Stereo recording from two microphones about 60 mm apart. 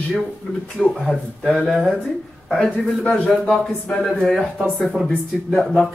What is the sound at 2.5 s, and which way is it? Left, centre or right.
Speech, centre.